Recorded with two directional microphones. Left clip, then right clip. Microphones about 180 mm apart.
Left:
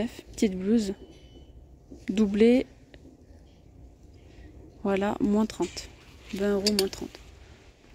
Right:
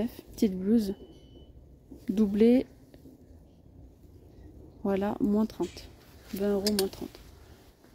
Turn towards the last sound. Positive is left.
turn(degrees=5)  # may be behind; listen again after turning